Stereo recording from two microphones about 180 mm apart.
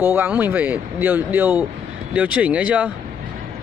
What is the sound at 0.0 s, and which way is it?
Speech, 10° right (ahead or behind).